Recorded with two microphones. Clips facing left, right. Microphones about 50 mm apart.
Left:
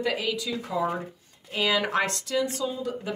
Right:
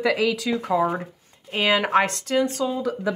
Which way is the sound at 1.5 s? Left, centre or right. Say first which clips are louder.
Right 5 dB; right.